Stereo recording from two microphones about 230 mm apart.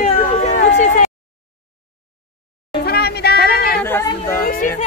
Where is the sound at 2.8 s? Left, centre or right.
Left.